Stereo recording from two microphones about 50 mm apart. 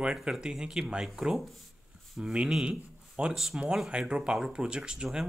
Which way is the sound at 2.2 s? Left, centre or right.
Centre.